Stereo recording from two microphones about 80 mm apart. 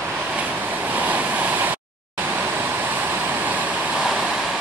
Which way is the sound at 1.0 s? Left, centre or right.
Right.